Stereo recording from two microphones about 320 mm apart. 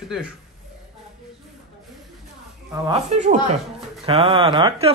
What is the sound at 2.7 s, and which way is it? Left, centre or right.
Speech, centre.